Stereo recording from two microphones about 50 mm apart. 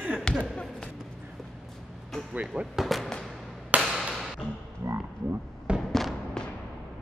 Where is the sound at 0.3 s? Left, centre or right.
Centre.